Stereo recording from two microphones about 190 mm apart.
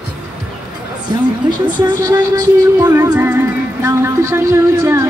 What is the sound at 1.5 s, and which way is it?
Speech, 25° right (ahead or behind).